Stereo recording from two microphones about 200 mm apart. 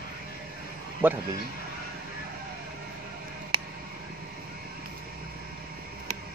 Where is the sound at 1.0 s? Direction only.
10° right (ahead or behind).